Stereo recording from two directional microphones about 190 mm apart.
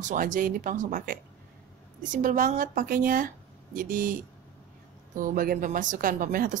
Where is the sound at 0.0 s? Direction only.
45° right (ahead or behind).